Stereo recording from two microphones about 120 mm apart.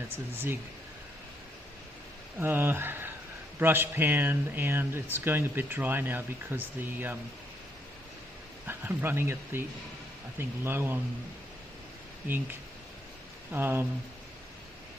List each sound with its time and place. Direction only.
0.1 s speech: 20° right (ahead or behind)
2.4 s speech: 20° right (ahead or behind)
8.6 s speech: 20° right (ahead or behind)
13.5 s speech: 15° right (ahead or behind)